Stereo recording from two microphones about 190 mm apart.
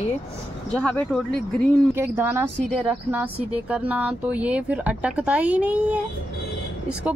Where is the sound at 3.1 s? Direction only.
10° right (ahead or behind).